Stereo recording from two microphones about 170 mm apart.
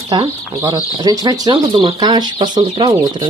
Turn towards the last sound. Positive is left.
turn(degrees=-30)  # may be behind; listen again after turning